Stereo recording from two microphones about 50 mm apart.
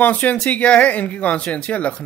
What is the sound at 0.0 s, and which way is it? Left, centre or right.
Speech, left.